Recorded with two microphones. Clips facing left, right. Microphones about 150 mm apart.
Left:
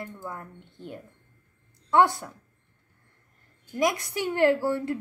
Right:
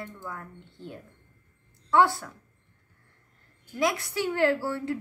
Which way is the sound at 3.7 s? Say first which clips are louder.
Left 1 dB; 15° left (ahead or behind).